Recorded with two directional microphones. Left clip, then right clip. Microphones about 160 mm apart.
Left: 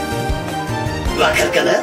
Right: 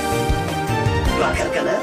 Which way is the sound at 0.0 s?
Centre (ahead or behind).